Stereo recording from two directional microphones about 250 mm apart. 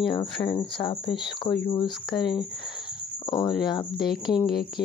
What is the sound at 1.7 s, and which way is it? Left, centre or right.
Cricket, centre.